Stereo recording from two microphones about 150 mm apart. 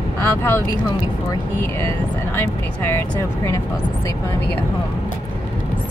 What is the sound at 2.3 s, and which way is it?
Speech, 15° left (ahead or behind).